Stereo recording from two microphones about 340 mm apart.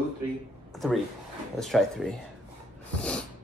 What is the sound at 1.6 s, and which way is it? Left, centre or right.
Speech, centre.